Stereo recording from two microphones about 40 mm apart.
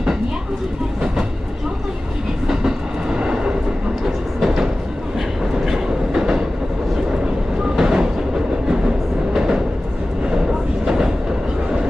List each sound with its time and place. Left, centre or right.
2.4 s train: centre
5.7 s train: centre
7.8 s train: centre
9.3 s train: centre